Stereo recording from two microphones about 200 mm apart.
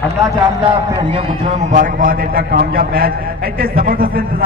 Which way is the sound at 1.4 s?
40° right (ahead or behind).